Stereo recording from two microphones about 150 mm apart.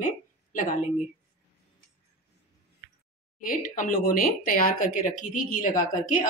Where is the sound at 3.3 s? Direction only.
65° left (ahead or behind).